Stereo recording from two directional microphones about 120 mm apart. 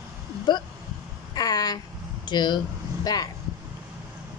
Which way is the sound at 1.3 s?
35° left (ahead or behind).